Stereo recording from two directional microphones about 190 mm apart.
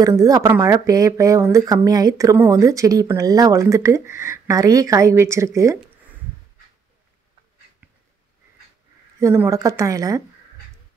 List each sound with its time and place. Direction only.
0.0 s speech: 20° right (ahead or behind)
9.2 s speech: 15° right (ahead or behind)